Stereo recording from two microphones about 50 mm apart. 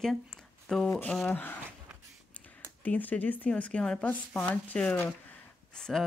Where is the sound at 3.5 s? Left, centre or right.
Left.